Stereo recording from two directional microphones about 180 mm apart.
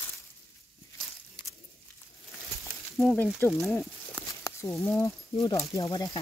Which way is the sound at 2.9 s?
5° left (ahead or behind).